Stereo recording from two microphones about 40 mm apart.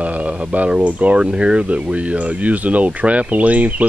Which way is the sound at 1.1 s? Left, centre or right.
Right.